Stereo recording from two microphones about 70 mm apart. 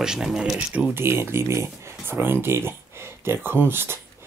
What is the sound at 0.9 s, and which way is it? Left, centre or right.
Speech, right.